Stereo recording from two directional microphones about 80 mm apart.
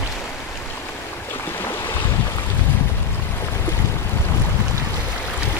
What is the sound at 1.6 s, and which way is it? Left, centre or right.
Boat, left.